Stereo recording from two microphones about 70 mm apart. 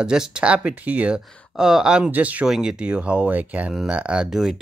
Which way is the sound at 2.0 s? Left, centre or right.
Right.